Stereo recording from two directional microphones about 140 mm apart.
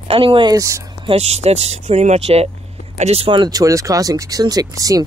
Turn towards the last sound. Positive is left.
turn(degrees=-25)  # may be behind; listen again after turning